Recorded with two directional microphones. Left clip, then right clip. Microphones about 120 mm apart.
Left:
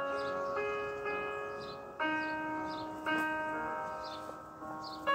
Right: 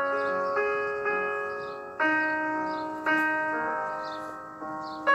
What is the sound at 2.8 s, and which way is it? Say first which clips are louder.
Church bell: right 8 dB; 30° right (ahead or behind).